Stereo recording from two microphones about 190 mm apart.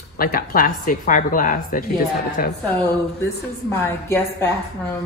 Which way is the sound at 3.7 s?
10° left (ahead or behind).